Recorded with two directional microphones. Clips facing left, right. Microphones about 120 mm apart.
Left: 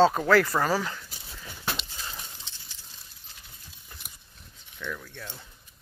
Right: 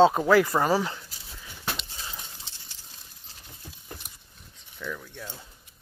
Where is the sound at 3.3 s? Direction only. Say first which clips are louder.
Right 1 dB; 35° right (ahead or behind).